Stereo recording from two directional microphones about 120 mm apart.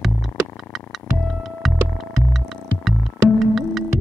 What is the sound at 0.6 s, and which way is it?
Music, centre (ahead or behind).